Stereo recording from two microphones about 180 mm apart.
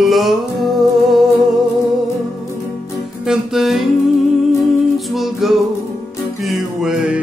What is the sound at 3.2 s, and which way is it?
Music, centre (ahead or behind).